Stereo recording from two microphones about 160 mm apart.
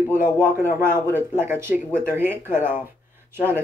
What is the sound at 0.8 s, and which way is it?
Speech, 15° right (ahead or behind).